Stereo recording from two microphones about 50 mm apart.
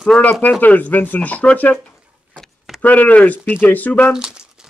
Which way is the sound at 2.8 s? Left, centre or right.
Left.